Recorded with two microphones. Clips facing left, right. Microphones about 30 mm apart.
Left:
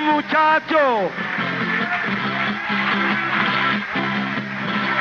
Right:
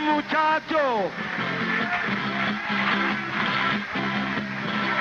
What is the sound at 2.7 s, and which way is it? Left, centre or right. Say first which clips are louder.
Music: left 4 dB; centre.